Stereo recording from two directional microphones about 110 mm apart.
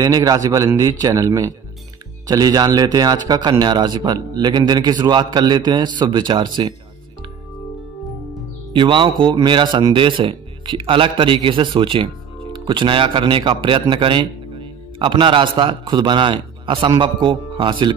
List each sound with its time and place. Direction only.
0.0 s a man's voice: 30° right (ahead or behind)
8.7 s a man's voice: 50° right (ahead or behind)